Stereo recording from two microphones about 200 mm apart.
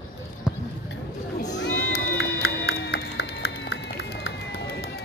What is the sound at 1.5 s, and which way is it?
Run, 60° left (ahead or behind).